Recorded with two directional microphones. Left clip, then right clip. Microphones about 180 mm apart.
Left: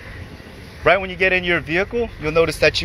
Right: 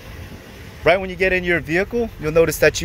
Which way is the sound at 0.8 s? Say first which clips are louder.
Left 1 dB; 35° right (ahead or behind).